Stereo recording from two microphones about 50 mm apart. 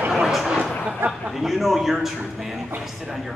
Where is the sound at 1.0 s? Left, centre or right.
Right.